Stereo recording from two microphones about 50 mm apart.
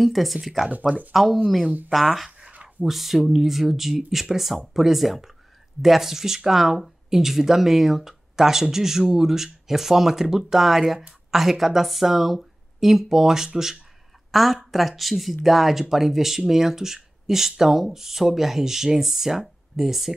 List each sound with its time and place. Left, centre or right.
0.0 s speech: centre
0.7 s speech: right
1.1 s a woman's voice: centre